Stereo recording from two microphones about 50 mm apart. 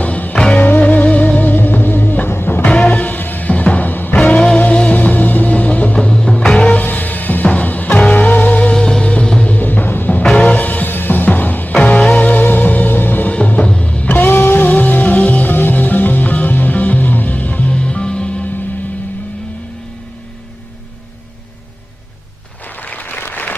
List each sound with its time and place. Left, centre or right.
0.0 s music: left
2.6 s music: left
5.9 s music: centre
6.9 s music: left
8.7 s music: centre
9.6 s music: left
13.3 s music: left
14.1 s music: left
22.8 s applause: left